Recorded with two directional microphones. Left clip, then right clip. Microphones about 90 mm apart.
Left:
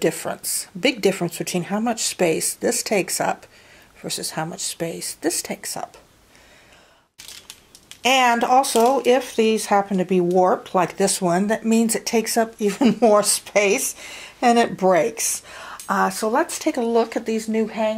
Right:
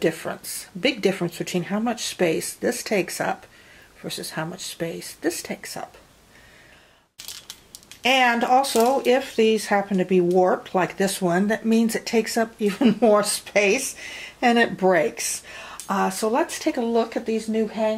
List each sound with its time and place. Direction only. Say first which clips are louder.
0.0 s speech: left 2 dB; 35° left (ahead or behind)
8.0 s speech: left 2 dB; 40° left (ahead or behind)